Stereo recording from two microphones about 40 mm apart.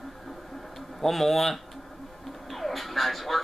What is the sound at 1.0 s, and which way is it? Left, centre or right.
Speech, centre.